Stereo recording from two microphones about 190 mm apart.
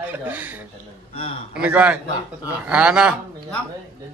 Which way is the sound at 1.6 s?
5° right (ahead or behind).